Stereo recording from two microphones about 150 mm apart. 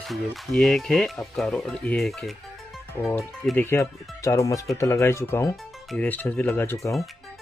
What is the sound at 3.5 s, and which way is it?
Speech, 15° left (ahead or behind).